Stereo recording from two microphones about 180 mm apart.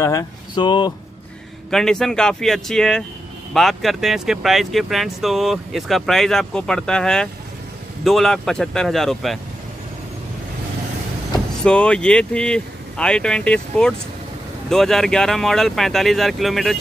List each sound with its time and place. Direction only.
0.0 s speech: 20° left (ahead or behind)
1.7 s speech: centre (ahead or behind)
11.6 s speech: 5° left (ahead or behind)